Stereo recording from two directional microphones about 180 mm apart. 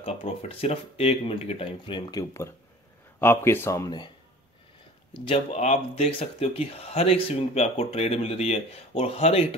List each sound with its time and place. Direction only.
0.0 s speech: 35° left (ahead or behind)
5.1 s speech: 30° left (ahead or behind)